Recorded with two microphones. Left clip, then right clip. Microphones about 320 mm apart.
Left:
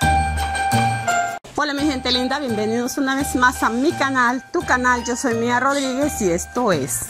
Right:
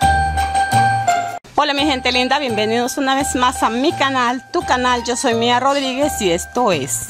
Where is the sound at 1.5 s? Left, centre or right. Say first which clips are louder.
Right 6 dB; right.